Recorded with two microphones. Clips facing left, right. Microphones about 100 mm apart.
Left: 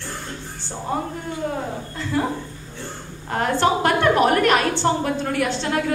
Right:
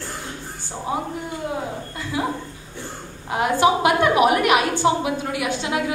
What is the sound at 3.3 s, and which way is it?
A woman's voice, 10° right (ahead or behind).